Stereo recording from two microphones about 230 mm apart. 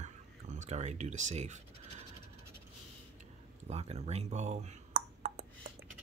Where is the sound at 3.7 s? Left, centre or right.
Right.